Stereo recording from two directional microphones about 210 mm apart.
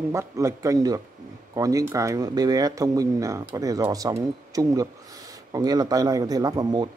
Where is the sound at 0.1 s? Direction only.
15° right (ahead or behind).